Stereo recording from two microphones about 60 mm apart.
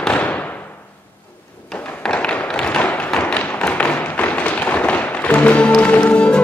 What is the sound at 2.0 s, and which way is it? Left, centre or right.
Tap, centre.